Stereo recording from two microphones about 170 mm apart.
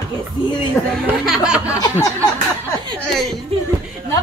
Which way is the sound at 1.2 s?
5° right (ahead or behind).